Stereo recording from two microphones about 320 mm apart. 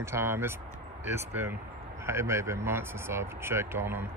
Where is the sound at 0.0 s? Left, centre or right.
Centre.